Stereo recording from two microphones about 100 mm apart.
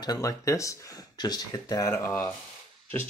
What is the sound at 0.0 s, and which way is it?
Speech, 35° left (ahead or behind).